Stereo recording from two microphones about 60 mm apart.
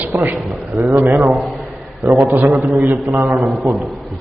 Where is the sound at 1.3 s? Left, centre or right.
Centre.